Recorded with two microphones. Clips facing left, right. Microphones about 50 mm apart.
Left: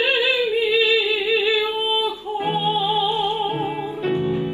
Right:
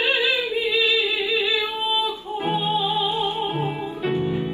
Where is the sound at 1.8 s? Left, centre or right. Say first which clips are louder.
Left 2 dB; left.